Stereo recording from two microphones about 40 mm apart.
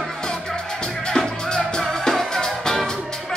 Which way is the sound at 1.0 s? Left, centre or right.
Centre.